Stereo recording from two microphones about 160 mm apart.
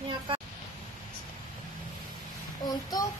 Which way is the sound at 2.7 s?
25° left (ahead or behind).